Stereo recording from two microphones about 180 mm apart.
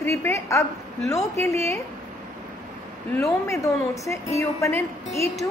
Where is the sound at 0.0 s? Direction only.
15° left (ahead or behind).